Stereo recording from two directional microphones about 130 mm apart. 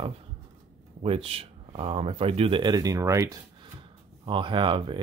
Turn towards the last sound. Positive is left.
turn(degrees=-40)  # may be behind; listen again after turning